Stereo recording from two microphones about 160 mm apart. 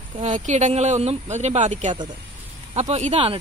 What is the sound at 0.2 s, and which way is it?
Speech, 45° right (ahead or behind).